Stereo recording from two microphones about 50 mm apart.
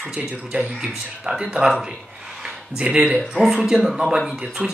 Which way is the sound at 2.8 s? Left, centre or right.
Right.